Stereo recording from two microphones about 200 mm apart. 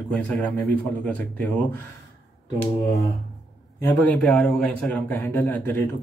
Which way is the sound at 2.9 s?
Centre (ahead or behind).